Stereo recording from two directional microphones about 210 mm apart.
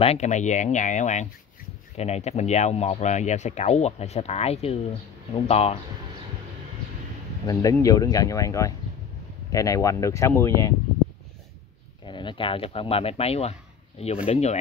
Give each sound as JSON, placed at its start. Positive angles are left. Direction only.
{"t": 0.0, "sound": "speech", "side_deg": 30}
{"t": 7.4, "sound": "speech", "side_deg": 15}
{"t": 12.0, "sound": "speech", "side_deg": 20}